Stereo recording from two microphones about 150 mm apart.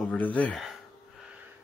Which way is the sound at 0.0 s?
10° left (ahead or behind).